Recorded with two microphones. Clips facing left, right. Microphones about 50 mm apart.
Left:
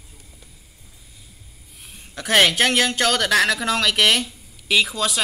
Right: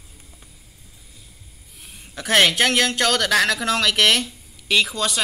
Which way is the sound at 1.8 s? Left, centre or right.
Centre.